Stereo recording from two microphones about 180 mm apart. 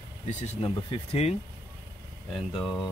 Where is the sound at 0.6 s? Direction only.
35° left (ahead or behind).